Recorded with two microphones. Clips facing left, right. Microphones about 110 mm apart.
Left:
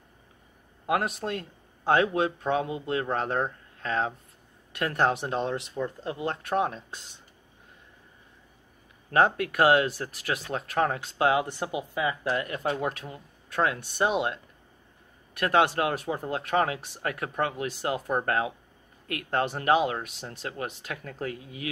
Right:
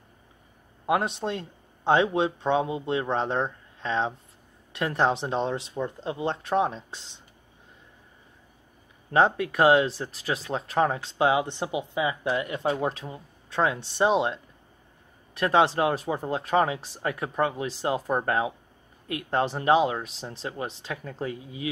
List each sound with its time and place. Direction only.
0.8 s speech: 25° right (ahead or behind)
9.1 s speech: 25° right (ahead or behind)